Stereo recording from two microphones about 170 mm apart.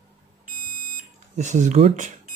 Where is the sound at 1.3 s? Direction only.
45° right (ahead or behind).